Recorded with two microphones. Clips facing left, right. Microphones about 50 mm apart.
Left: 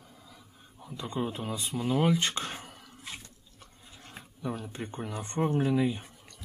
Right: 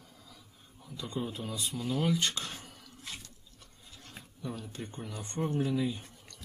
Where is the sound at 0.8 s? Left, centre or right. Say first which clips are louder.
Left 4 dB; left.